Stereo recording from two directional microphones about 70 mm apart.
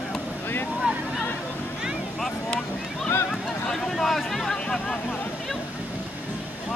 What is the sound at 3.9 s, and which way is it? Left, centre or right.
Vehicle, centre.